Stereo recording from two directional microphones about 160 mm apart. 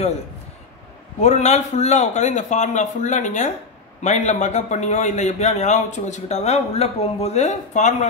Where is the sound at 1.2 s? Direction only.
45° left (ahead or behind).